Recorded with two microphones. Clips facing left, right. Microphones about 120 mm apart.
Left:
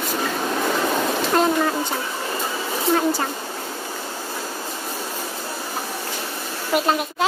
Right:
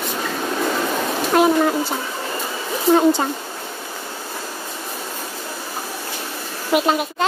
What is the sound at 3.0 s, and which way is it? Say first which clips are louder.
Speech: right 5 dB; 25° right (ahead or behind).